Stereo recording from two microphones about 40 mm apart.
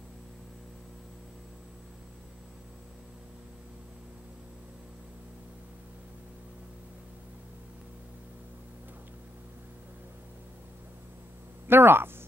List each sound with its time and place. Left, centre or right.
11.6 s speech: right